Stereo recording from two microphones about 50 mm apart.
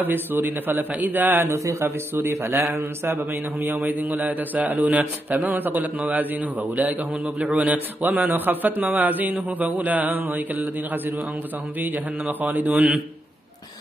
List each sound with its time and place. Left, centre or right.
0.0 s a man's voice: right
1.5 s speech: right
1.9 s a man's voice: right
2.5 s a man's voice: right